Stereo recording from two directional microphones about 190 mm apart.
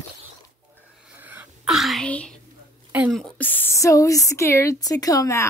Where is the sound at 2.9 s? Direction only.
5° right (ahead or behind).